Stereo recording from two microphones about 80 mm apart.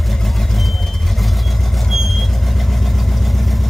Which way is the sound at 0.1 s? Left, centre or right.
Centre.